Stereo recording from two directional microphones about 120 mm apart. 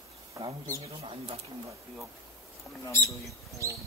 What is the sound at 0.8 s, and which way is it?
Speech, 55° right (ahead or behind).